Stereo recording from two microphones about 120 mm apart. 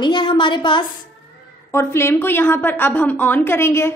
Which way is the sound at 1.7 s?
20° left (ahead or behind).